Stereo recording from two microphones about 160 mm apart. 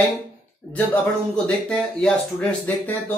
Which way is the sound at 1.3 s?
5° left (ahead or behind).